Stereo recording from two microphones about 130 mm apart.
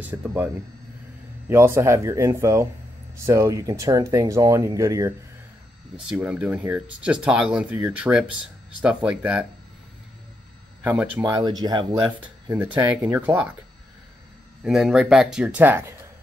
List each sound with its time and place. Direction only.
0.0 s speech: 15° right (ahead or behind)
1.5 s speech: 20° right (ahead or behind)
6.0 s speech: 10° right (ahead or behind)
10.8 s speech: 10° right (ahead or behind)
11.2 s speech: 30° right (ahead or behind)
12.2 s speech: 10° right (ahead or behind)
14.6 s speech: 5° right (ahead or behind)